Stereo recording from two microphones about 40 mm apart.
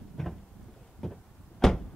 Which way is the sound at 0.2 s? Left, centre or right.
Centre.